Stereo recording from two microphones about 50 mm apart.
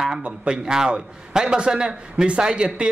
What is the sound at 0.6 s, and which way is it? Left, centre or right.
A man's voice, centre.